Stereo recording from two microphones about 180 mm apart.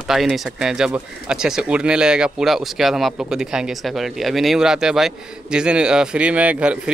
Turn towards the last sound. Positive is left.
turn(degrees=-5)  # may be behind; listen again after turning